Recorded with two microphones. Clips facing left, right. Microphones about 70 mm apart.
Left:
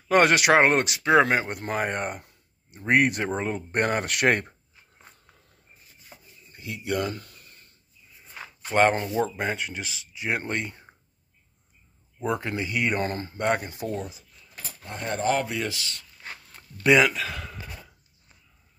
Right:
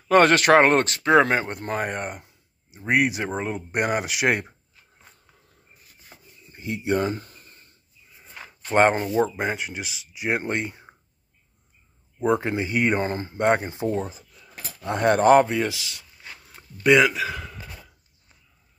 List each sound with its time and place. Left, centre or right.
0.1 s speech: centre
6.5 s a sound: right
8.7 s speech: centre
12.2 s speech: right
14.8 s speech: right
15.6 s speech: centre